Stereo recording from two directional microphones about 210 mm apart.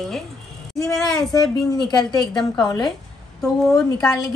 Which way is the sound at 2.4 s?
20° left (ahead or behind).